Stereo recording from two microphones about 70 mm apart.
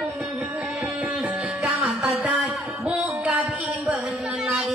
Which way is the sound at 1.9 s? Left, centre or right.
Centre.